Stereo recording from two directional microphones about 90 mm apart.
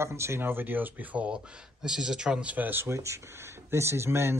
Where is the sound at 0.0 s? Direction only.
30° right (ahead or behind).